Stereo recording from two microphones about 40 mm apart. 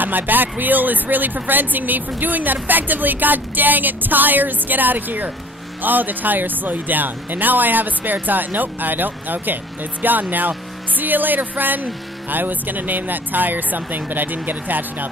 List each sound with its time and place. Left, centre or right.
0.0 s speech: right